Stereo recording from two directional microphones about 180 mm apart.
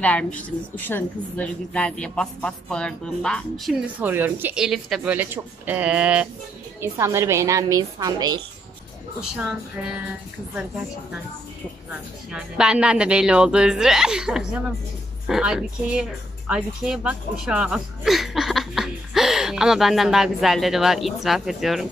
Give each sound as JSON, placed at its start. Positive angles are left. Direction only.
{"t": 0.0, "sound": "a woman's voice", "side_deg": 10}
{"t": 4.0, "sound": "speech", "side_deg": -10}
{"t": 9.3, "sound": "a woman's voice", "side_deg": -5}
{"t": 12.3, "sound": "a woman's voice", "side_deg": -5}